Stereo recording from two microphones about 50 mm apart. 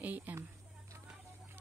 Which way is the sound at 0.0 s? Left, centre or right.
Right.